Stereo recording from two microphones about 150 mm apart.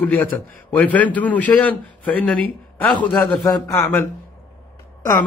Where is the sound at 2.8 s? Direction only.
30° left (ahead or behind).